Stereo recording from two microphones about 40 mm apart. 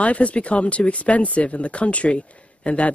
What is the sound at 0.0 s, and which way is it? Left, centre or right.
Speech, left.